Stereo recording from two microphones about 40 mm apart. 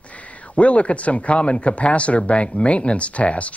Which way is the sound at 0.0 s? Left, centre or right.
Left.